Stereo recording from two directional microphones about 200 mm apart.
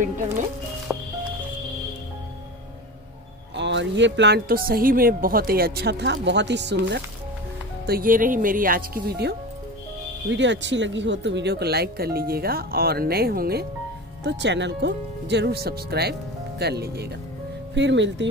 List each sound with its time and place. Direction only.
0.9 s music: 5° right (ahead or behind)
3.5 s speech: 60° right (ahead or behind)
7.8 s speech: 45° right (ahead or behind)
10.3 s speech: 65° right (ahead or behind)
14.2 s speech: 60° right (ahead or behind)